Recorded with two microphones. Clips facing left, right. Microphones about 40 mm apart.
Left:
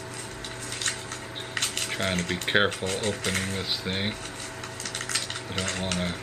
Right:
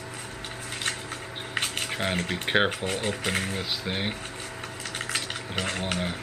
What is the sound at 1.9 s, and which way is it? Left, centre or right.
Speech, centre.